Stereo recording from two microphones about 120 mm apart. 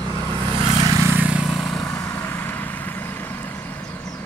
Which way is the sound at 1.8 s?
25° left (ahead or behind).